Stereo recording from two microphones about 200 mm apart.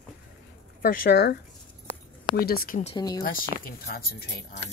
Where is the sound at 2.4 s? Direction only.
50° left (ahead or behind).